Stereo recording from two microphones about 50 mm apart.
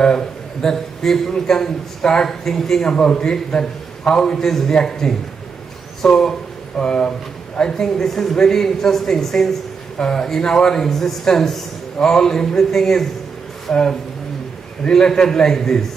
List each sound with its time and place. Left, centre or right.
0.0 s a man's voice: centre
14.9 s a man's voice: centre